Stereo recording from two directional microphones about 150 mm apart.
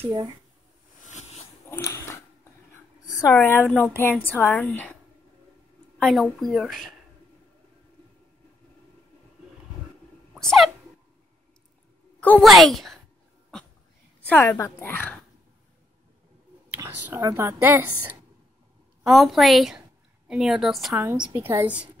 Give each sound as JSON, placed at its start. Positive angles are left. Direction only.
{"t": 1.0, "sound": "a sound", "side_deg": 50}
{"t": 1.7, "sound": "biting", "side_deg": 15}
{"t": 3.3, "sound": "a woman's voice", "side_deg": 10}
{"t": 5.9, "sound": "a woman's voice", "side_deg": 0}
{"t": 10.3, "sound": "a sound", "side_deg": 0}
{"t": 12.2, "sound": "a woman's voice", "side_deg": 5}
{"t": 14.2, "sound": "a woman's voice", "side_deg": 15}
{"t": 16.7, "sound": "a woman's voice", "side_deg": -20}
{"t": 19.0, "sound": "a woman's voice", "side_deg": 0}
{"t": 21.3, "sound": "a woman's voice", "side_deg": -15}